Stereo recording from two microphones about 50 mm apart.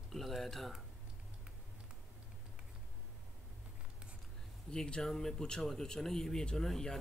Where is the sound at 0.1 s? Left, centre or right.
Centre.